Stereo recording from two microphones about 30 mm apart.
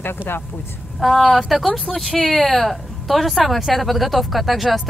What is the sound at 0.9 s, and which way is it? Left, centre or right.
Speech, centre.